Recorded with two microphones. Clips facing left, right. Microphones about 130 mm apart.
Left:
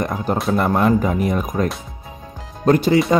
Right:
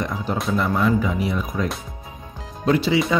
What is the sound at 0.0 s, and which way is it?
Speech, 50° left (ahead or behind).